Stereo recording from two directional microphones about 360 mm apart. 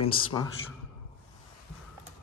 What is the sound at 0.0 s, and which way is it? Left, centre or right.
Speech, centre.